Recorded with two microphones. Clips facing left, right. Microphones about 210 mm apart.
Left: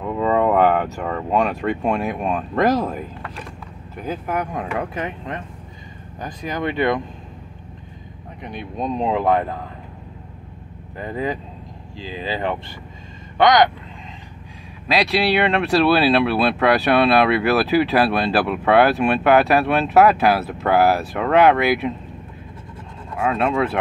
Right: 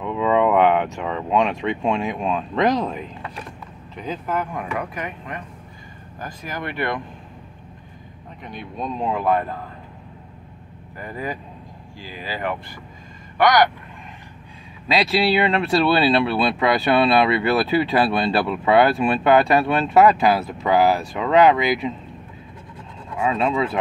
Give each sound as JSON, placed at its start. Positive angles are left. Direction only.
{"t": 0.0, "sound": "speech", "side_deg": 5}
{"t": 8.7, "sound": "speech", "side_deg": 15}
{"t": 11.0, "sound": "speech", "side_deg": 20}
{"t": 14.9, "sound": "speech", "side_deg": 0}
{"t": 23.2, "sound": "speech", "side_deg": 5}